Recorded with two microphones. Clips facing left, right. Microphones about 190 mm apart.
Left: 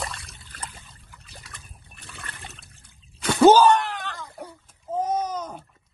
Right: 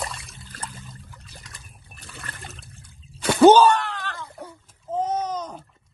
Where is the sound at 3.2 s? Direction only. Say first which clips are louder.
Right 2 dB; 30° right (ahead or behind).